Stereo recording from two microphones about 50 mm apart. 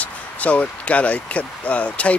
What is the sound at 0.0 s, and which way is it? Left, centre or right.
Speech, left.